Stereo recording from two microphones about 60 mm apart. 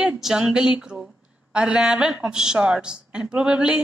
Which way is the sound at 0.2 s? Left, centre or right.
Centre.